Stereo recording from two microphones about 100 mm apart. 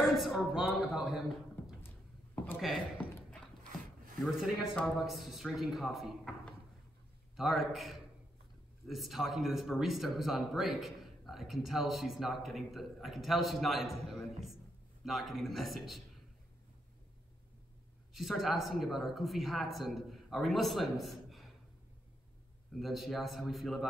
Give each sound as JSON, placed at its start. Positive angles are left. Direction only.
{"t": 0.2, "sound": "a man's voice", "side_deg": -5}
{"t": 2.3, "sound": "a sound", "side_deg": 20}
{"t": 4.8, "sound": "a man's voice", "side_deg": 0}
{"t": 7.3, "sound": "a man's voice", "side_deg": 0}
{"t": 18.1, "sound": "a man's voice", "side_deg": 0}
{"t": 22.8, "sound": "a man's voice", "side_deg": 0}